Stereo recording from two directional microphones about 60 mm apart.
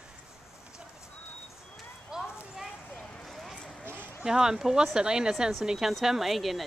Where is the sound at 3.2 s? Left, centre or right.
Centre.